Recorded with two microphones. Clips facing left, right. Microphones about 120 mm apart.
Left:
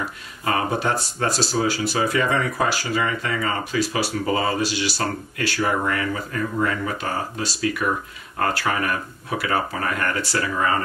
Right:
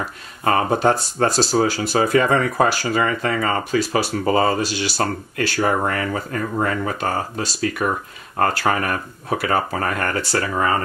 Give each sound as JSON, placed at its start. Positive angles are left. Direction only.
{"t": 0.4, "sound": "speech", "side_deg": -40}